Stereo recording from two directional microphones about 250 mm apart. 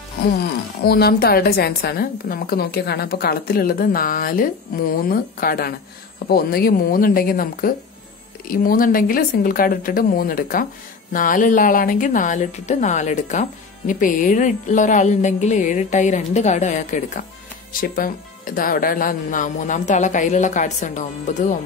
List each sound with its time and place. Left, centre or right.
0.4 s speech: left